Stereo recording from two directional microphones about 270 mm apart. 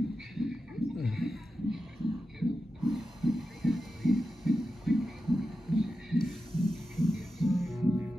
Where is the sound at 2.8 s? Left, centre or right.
Centre.